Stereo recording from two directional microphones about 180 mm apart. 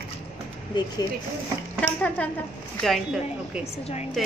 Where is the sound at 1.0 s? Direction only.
20° left (ahead or behind).